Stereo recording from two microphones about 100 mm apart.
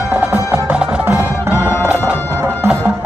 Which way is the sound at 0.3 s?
15° right (ahead or behind).